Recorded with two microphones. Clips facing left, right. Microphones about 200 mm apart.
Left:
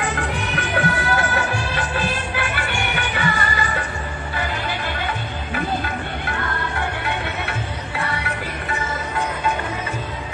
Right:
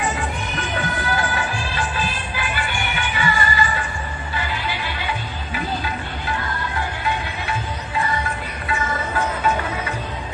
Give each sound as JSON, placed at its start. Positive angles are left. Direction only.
{"t": 0.0, "sound": "music", "side_deg": 60}